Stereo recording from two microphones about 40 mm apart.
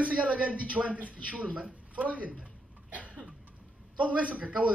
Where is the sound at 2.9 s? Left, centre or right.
Right.